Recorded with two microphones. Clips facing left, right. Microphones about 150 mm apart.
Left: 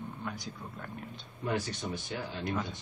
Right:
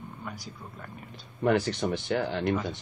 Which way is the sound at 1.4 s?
70° right (ahead or behind).